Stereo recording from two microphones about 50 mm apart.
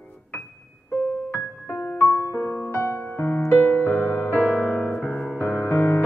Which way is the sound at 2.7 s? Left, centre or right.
Left.